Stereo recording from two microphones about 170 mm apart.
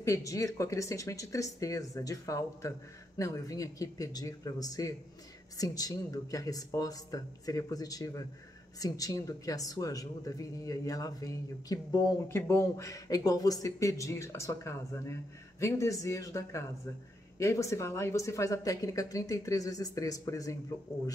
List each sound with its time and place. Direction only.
0.0 s speech: 20° left (ahead or behind)